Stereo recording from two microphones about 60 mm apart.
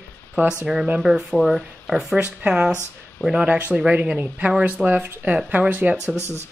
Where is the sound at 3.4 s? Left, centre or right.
Right.